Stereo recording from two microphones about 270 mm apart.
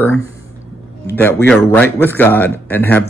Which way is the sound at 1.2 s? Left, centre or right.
Centre.